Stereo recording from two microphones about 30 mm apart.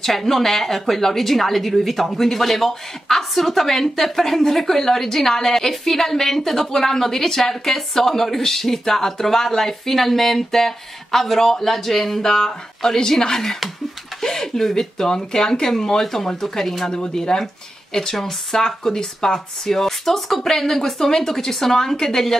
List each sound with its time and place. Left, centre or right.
0.0 s a woman's voice: centre
16.9 s a woman's voice: left